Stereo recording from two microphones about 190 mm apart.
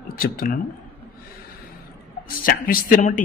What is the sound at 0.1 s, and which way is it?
Speech, 50° left (ahead or behind).